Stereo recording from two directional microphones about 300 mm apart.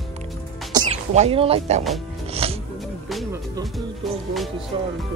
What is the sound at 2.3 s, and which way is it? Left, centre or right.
Music, centre.